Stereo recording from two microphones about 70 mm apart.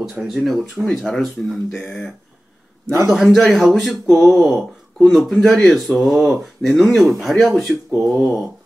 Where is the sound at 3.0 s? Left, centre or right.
Centre.